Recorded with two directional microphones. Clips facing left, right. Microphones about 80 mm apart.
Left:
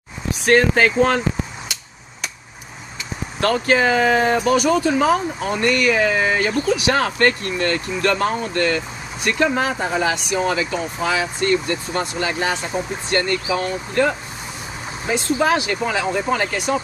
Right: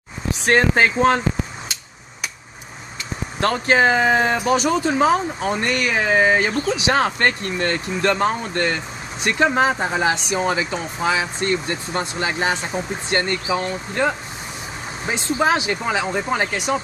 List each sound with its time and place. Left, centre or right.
0.5 s speech: right
3.3 s speech: right